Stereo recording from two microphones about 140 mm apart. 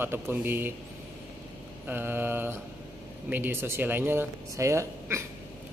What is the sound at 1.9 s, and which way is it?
Speech, 15° right (ahead or behind).